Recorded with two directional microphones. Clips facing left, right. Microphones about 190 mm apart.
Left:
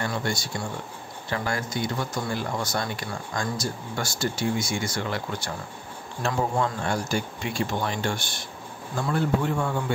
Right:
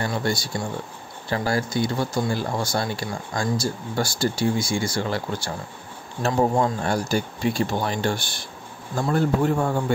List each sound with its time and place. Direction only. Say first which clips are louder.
0.0 s speech: right 3 dB; 35° right (ahead or behind)